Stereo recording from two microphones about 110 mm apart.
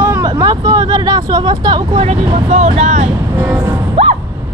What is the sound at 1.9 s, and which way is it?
Speech, 75° right (ahead or behind).